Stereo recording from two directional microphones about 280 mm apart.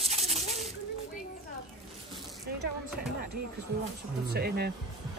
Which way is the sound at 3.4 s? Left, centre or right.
Right.